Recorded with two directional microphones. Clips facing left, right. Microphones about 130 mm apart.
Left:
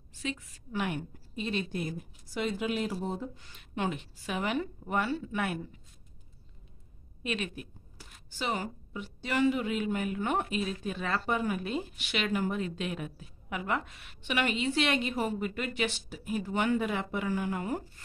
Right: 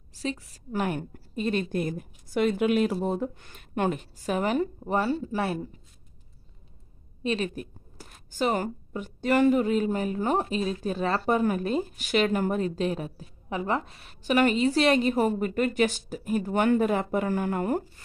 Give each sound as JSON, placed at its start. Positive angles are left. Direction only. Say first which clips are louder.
{"t": 0.1, "sound": "a sound", "louder": "right 5 dB", "side_deg": -35}
{"t": 0.5, "sound": "a woman's voice", "louder": "right 5 dB", "side_deg": -40}
{"t": 7.2, "sound": "a woman's voice", "louder": "right 7 dB", "side_deg": -35}